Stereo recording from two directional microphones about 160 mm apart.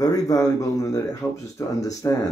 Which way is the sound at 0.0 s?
20° left (ahead or behind).